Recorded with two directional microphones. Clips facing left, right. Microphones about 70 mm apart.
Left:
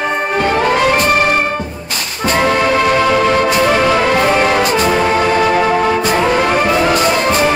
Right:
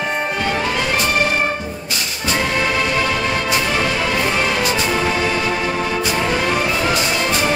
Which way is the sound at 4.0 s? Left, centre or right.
Left.